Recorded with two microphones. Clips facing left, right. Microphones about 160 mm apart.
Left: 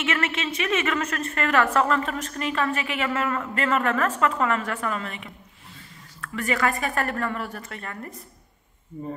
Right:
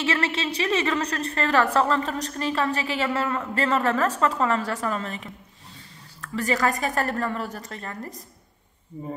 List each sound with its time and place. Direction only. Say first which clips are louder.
0.0 s a woman's voice: right 1 dB; 35° right (ahead or behind)